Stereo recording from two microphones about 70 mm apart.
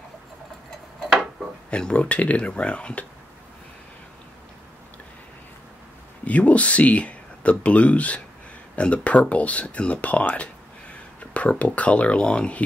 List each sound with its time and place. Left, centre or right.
1.7 s speech: centre
6.2 s speech: centre